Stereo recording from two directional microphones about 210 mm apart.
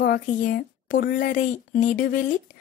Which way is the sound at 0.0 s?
40° left (ahead or behind).